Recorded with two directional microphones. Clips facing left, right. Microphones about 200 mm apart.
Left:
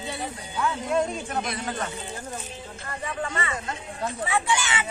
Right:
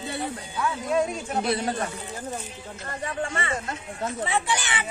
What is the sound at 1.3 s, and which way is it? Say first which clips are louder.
Speech: right 4 dB; 30° right (ahead or behind).